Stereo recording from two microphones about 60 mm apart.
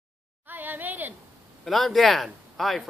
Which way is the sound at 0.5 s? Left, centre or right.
Right.